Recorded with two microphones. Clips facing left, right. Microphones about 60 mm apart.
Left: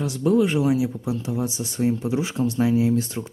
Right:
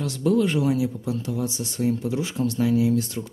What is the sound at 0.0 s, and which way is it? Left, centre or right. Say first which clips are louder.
Speech: left 2 dB; left.